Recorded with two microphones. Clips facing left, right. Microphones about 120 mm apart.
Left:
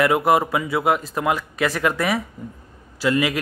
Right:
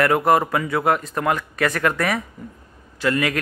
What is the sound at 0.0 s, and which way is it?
A man's voice, 5° left (ahead or behind).